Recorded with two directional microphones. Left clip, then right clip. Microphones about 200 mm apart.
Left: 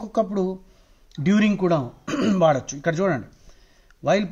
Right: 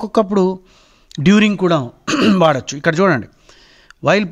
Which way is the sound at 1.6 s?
30° right (ahead or behind).